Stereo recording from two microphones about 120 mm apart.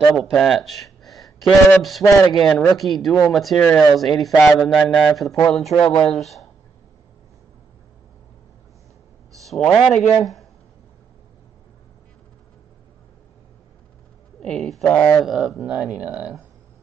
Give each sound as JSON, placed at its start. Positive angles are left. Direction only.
{"t": 0.1, "sound": "speech", "side_deg": 5}
{"t": 5.9, "sound": "speech", "side_deg": 55}
{"t": 6.1, "sound": "speech", "side_deg": 0}
{"t": 9.3, "sound": "a sound", "side_deg": 0}
{"t": 9.8, "sound": "speech", "side_deg": 0}
{"t": 14.4, "sound": "speech", "side_deg": 5}
{"t": 15.2, "sound": "speech", "side_deg": 0}